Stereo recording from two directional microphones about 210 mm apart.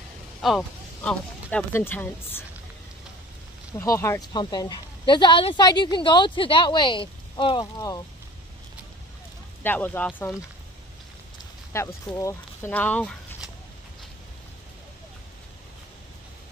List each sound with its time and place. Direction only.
0.4 s speech: centre (ahead or behind)
3.7 s speech: 15° left (ahead or behind)
9.6 s speech: 10° left (ahead or behind)
11.7 s speech: 15° left (ahead or behind)